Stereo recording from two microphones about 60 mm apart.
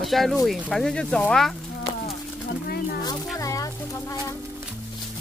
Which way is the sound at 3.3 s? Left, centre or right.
Left.